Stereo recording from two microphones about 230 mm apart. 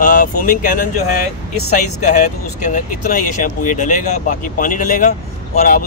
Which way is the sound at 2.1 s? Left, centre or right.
Left.